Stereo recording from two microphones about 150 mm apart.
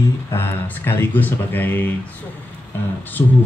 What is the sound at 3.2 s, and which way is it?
Speech, 20° left (ahead or behind).